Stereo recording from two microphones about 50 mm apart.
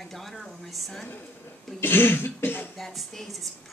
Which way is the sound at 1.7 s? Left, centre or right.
Left.